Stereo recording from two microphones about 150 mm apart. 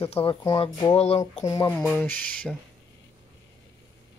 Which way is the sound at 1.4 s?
25° left (ahead or behind).